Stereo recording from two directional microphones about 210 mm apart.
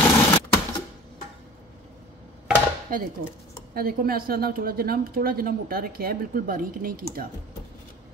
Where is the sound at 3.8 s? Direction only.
45° right (ahead or behind).